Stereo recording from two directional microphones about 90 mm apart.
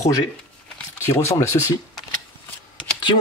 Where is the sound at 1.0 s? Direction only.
30° left (ahead or behind).